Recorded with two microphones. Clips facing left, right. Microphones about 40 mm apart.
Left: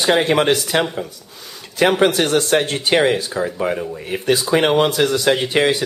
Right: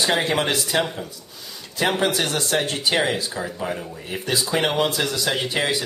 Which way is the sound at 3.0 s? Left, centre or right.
Left.